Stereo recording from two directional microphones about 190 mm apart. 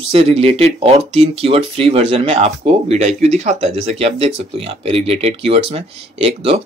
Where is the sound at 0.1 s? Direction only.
30° right (ahead or behind).